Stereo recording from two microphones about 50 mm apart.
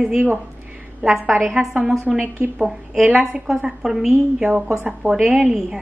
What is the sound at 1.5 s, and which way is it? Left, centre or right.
Speech, centre.